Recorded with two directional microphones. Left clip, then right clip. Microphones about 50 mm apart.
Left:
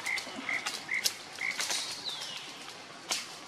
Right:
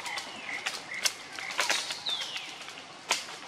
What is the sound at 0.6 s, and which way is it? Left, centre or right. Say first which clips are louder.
Frog: even; right.